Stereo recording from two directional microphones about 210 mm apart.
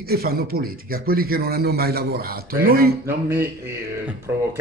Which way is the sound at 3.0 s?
10° right (ahead or behind).